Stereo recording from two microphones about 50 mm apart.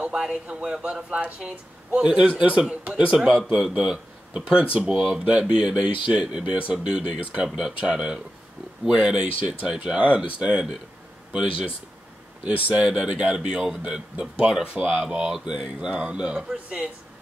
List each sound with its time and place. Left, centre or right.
0.0 s a man's voice: centre
3.2 s a man's voice: centre
5.5 s speech: centre
12.4 s speech: right
12.8 s speech: centre